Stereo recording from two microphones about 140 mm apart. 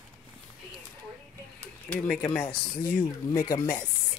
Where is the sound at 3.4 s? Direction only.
25° left (ahead or behind).